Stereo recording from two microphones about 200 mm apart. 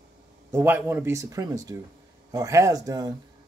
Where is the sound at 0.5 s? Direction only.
10° right (ahead or behind).